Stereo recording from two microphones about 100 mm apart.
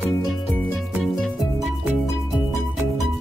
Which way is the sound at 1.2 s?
Centre (ahead or behind).